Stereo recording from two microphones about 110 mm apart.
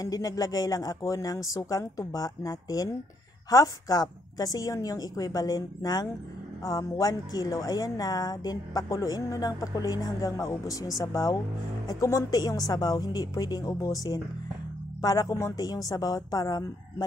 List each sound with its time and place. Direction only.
0.0 s speech: 35° left (ahead or behind)